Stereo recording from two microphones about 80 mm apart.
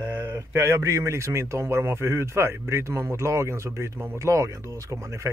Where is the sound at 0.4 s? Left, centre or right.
Right.